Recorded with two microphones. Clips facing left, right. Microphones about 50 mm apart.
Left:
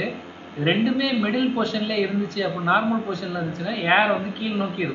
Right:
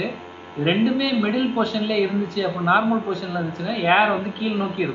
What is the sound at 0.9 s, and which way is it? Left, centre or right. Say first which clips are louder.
Speech: right 1 dB; centre.